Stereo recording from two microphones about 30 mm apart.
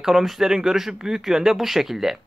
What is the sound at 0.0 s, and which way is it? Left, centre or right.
Speech, centre.